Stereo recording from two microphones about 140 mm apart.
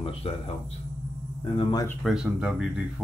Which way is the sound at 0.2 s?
45° left (ahead or behind).